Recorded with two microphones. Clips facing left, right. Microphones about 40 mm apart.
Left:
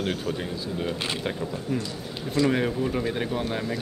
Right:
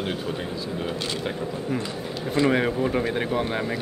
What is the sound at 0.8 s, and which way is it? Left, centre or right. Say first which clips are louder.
Speech: left 1 dB; centre.